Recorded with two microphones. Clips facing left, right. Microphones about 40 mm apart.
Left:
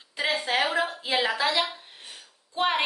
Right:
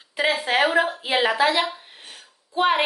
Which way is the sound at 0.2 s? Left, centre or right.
Centre.